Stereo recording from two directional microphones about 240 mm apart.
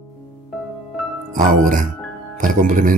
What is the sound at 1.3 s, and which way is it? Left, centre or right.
Speech, right.